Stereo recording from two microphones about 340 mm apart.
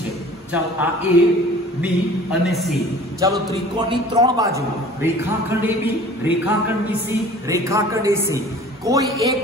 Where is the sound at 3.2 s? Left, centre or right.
Centre.